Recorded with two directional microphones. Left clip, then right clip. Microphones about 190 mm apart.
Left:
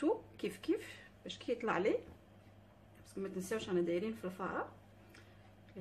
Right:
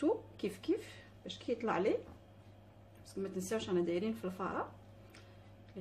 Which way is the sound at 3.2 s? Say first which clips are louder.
Right 2 dB; 5° left (ahead or behind).